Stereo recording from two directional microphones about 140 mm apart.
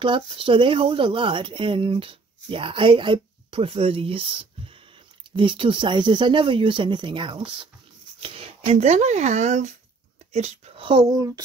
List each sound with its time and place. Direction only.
0.0 s speech: 35° right (ahead or behind)
10.9 s speech: 30° right (ahead or behind)